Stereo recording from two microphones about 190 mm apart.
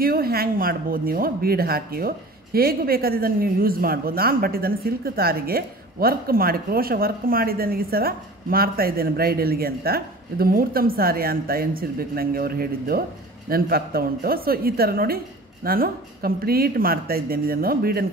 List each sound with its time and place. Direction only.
0.0 s speech: 50° right (ahead or behind)